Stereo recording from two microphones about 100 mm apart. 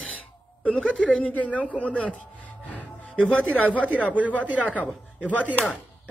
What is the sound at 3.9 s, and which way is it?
Speech, 15° right (ahead or behind).